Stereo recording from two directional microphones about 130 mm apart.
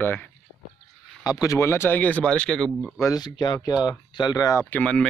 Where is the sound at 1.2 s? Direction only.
30° left (ahead or behind); by 2.9 s 5° left (ahead or behind).